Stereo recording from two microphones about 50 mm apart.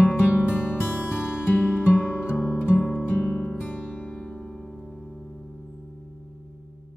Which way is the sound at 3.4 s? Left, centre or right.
Centre.